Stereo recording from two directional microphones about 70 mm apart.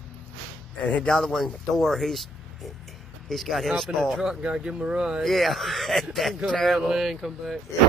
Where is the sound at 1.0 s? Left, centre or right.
Centre.